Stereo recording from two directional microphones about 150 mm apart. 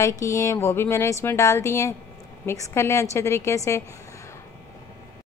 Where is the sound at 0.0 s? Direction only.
20° left (ahead or behind).